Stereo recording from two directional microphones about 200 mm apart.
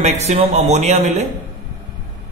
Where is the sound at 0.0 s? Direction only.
35° right (ahead or behind).